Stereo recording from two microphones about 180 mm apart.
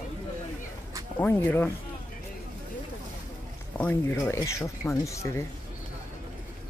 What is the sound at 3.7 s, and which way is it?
Speech, 10° left (ahead or behind).